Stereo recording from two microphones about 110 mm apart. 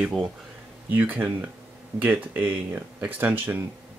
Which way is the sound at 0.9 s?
15° right (ahead or behind).